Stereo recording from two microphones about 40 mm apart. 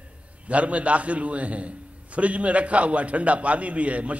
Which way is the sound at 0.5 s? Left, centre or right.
Right.